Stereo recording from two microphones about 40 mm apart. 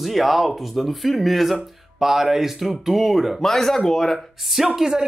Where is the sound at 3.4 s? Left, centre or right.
Centre.